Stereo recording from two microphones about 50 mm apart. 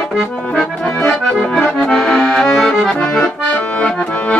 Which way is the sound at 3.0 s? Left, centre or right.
Left.